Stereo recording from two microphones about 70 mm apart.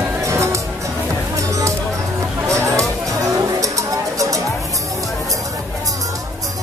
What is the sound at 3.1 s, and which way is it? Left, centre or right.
Music, right.